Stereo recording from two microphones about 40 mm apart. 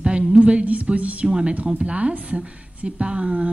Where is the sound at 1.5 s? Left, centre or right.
Right.